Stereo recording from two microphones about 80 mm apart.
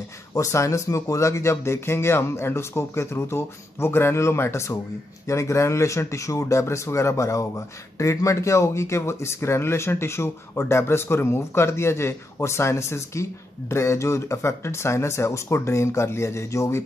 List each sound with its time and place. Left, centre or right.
0.3 s speech: left